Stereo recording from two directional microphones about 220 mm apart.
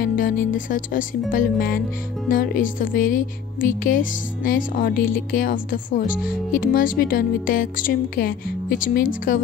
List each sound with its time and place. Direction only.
0.0 s speech: 40° left (ahead or behind)